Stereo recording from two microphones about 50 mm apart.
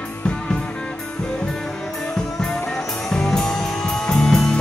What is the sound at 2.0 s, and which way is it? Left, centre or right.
Music, centre.